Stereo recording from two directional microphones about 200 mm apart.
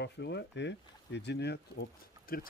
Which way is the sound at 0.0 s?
60° left (ahead or behind).